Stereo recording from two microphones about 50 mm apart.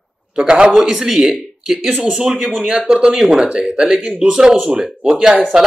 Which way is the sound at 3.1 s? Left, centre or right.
Centre.